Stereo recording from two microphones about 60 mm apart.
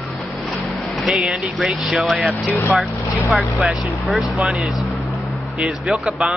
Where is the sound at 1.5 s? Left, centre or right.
Centre.